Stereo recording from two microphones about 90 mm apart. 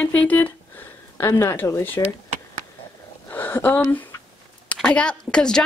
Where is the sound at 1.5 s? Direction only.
20° left (ahead or behind).